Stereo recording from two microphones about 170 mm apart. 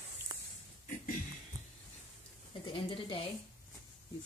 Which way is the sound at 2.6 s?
30° left (ahead or behind).